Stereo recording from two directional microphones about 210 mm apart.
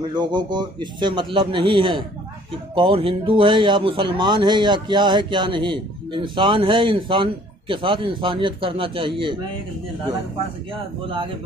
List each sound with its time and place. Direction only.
0.1 s speech: 20° right (ahead or behind)
10.7 s speech: 25° right (ahead or behind)